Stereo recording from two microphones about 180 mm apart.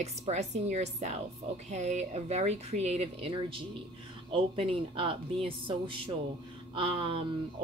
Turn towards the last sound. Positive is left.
turn(degrees=-30)  # may be behind; listen again after turning